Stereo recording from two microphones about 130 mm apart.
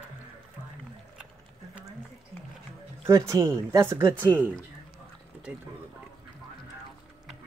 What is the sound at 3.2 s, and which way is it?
Speech, 20° right (ahead or behind).